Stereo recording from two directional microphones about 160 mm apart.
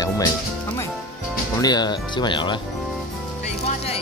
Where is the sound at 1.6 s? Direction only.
25° left (ahead or behind).